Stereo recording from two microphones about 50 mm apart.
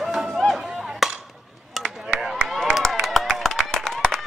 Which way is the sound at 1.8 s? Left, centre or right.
Right.